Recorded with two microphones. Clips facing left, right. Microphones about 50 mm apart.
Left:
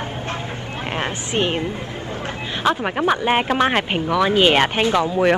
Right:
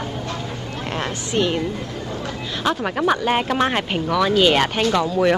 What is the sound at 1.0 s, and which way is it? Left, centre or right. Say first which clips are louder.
Speech: even; left.